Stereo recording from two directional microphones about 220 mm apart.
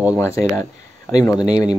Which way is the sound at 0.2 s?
15° left (ahead or behind).